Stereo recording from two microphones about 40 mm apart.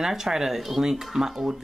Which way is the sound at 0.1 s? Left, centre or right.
Centre.